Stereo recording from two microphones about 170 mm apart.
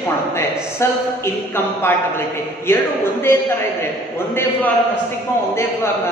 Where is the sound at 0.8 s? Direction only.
15° left (ahead or behind).